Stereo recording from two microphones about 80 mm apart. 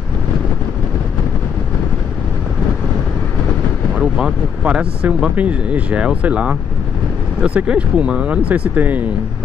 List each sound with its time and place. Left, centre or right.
4.0 s speech: centre